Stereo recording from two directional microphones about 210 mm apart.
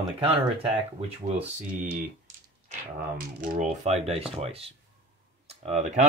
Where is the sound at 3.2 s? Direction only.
40° right (ahead or behind).